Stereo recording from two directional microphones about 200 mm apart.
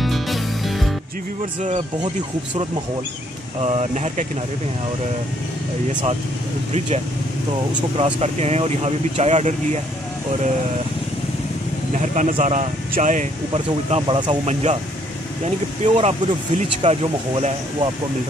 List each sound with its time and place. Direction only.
0.0 s music: centre (ahead or behind)
3.5 s speech: 35° right (ahead or behind)
8.0 s speech: 30° right (ahead or behind)
12.0 s speech: 35° right (ahead or behind)
15.8 s speech: 30° right (ahead or behind)